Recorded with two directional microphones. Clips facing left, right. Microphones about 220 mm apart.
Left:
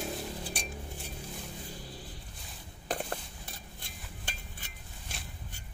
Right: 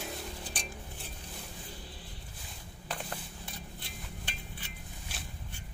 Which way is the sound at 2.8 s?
45° left (ahead or behind).